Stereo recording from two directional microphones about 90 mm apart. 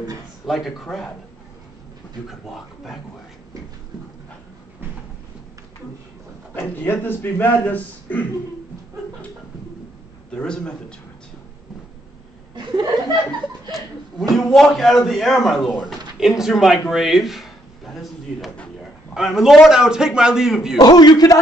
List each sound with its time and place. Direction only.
0.5 s a man's voice: centre (ahead or behind)
2.2 s a man's voice: centre (ahead or behind)
6.5 s a man's voice: 20° left (ahead or behind)
10.3 s a man's voice: 10° left (ahead or behind)
12.5 s chuckle: 55° right (ahead or behind)
13.4 s chuckle: centre (ahead or behind)
14.3 s a man's voice: 5° left (ahead or behind)
20.7 s a man's voice: 50° left (ahead or behind)